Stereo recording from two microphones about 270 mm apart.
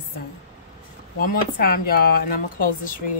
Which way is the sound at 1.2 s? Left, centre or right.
Left.